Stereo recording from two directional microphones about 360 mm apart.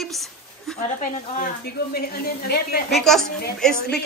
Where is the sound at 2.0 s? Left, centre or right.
Left.